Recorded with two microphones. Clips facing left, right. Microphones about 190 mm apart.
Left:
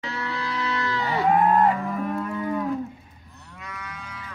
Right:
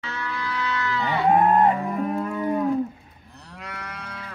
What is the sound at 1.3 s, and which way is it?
Music, 20° right (ahead or behind).